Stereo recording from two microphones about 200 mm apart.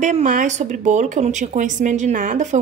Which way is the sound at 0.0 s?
40° right (ahead or behind).